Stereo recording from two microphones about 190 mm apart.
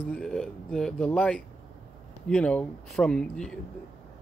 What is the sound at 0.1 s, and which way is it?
Speech, 5° left (ahead or behind).